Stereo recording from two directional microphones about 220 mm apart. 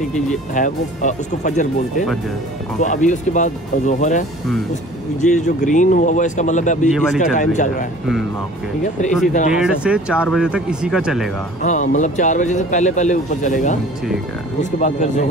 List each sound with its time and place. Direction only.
0.6 s speech: 35° left (ahead or behind)
5.2 s speech: 35° left (ahead or behind)
6.9 s speech: centre (ahead or behind)
7.3 s speech: 35° left (ahead or behind)
9.5 s speech: 5° right (ahead or behind)
11.6 s speech: 35° left (ahead or behind)